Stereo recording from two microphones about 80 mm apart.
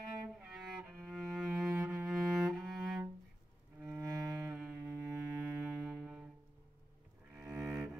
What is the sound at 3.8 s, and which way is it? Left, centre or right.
Cello, right.